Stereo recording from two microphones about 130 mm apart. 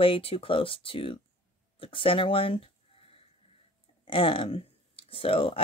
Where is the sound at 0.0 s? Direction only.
45° left (ahead or behind).